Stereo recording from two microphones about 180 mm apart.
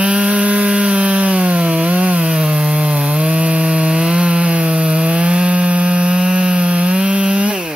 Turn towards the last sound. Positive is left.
turn(degrees=-5)  # may be behind; listen again after turning